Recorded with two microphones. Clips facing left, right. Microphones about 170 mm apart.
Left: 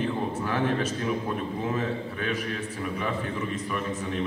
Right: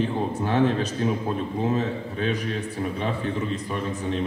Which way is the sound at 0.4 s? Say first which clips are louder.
Right 6 dB; 30° right (ahead or behind).